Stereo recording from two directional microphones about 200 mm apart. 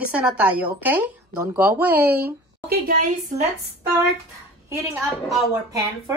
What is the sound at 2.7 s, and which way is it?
Speech, 45° right (ahead or behind).